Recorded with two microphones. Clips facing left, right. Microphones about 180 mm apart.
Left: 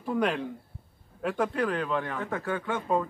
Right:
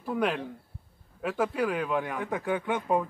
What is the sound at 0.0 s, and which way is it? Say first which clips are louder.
Speech: left 1 dB; centre (ahead or behind).